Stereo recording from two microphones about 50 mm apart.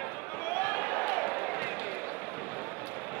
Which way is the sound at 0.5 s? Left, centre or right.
Left.